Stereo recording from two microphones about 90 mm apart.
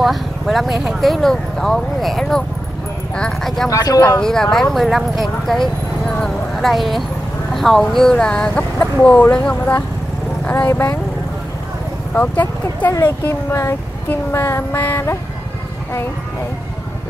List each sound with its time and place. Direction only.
0.0 s speech: centre (ahead or behind)
3.6 s speech: 40° left (ahead or behind)
4.2 s speech: 5° left (ahead or behind)
12.1 s speech: 20° left (ahead or behind)
13.2 s a sound: 30° left (ahead or behind)